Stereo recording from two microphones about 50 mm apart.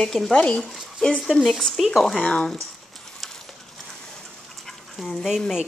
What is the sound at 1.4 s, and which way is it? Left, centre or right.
Speech, centre.